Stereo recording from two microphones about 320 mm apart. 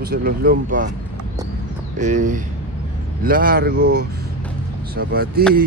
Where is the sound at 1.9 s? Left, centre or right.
Right.